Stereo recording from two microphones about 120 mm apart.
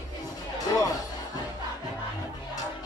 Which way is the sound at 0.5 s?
30° left (ahead or behind).